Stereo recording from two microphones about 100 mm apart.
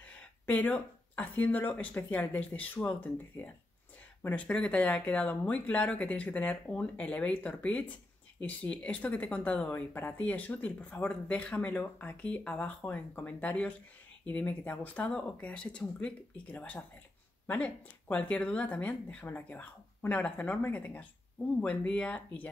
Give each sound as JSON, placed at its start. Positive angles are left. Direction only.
{"t": 0.0, "sound": "speech", "side_deg": 15}